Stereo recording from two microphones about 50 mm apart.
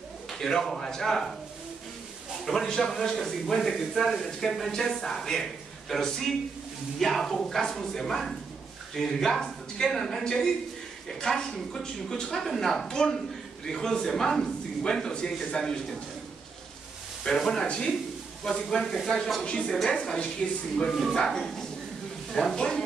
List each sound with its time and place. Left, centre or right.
0.3 s a man's voice: centre
2.4 s a man's voice: centre
17.2 s a man's voice: centre
19.4 s a woman's voice: centre